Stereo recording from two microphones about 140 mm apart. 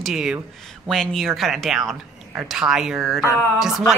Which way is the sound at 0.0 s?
5° right (ahead or behind).